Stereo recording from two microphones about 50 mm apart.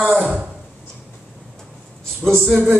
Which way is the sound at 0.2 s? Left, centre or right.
Centre.